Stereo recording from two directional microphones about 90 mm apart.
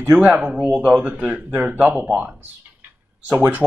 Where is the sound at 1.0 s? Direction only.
20° right (ahead or behind).